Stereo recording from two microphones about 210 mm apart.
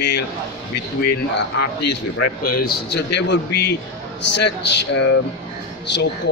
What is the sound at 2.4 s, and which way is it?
Speech, 45° left (ahead or behind).